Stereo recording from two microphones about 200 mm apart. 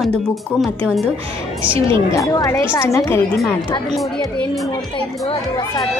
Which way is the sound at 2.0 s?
15° left (ahead or behind).